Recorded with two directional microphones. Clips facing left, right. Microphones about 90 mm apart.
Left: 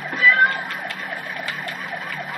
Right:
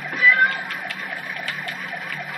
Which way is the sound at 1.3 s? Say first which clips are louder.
Left 1 dB; centre (ahead or behind).